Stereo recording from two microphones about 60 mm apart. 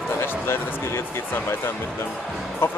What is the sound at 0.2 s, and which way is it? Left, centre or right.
Speech, left.